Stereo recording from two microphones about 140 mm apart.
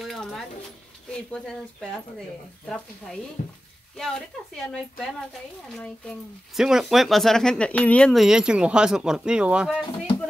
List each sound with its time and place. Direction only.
0.0 s a sound: centre (ahead or behind)
1.1 s speech: 5° left (ahead or behind)
3.4 s speech: 80° left
3.9 s speech: 5° left (ahead or behind)